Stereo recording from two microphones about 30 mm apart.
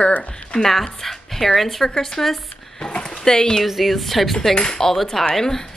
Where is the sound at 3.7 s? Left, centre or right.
Centre.